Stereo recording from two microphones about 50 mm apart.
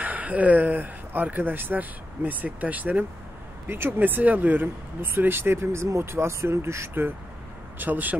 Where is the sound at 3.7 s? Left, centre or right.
Right.